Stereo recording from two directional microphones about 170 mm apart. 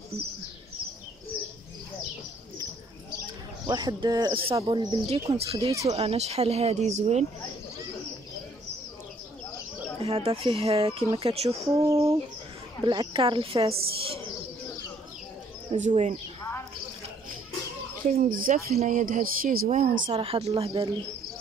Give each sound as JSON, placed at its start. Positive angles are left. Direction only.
{"t": 3.6, "sound": "speech", "side_deg": -25}
{"t": 9.9, "sound": "speech", "side_deg": -35}
{"t": 11.9, "sound": "speech", "side_deg": -15}
{"t": 12.8, "sound": "speech", "side_deg": -30}
{"t": 15.7, "sound": "speech", "side_deg": -45}
{"t": 18.1, "sound": "speech", "side_deg": -55}
{"t": 20.2, "sound": "speech", "side_deg": -35}